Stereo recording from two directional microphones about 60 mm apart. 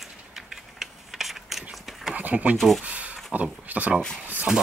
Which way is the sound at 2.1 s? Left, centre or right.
Right.